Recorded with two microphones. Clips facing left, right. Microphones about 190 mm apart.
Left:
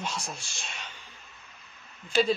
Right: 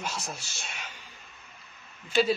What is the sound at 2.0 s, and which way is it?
Speech, 5° right (ahead or behind).